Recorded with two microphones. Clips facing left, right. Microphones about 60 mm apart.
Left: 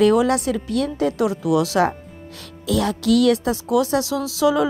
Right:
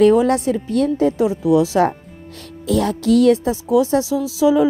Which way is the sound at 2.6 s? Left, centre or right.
Right.